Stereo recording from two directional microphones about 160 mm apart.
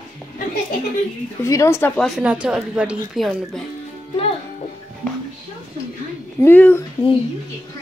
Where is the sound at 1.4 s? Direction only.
20° left (ahead or behind).